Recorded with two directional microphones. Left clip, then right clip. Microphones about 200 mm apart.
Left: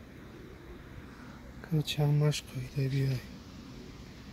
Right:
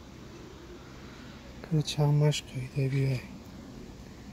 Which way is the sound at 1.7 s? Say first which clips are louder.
Right 2 dB; 10° right (ahead or behind).